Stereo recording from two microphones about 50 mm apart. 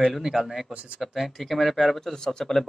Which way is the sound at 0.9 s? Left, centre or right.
Centre.